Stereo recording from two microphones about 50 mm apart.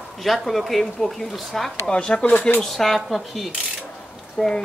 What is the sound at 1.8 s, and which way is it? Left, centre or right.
Speech, centre.